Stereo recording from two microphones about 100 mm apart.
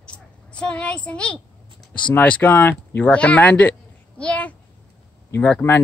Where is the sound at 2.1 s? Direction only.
15° left (ahead or behind).